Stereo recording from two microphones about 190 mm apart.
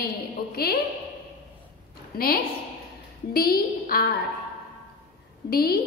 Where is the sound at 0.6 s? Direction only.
55° left (ahead or behind).